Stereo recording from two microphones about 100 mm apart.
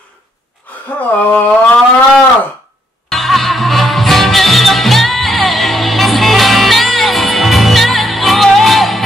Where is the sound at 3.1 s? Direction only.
Centre (ahead or behind).